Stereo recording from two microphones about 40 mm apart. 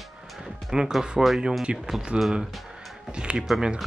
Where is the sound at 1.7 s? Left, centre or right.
Right.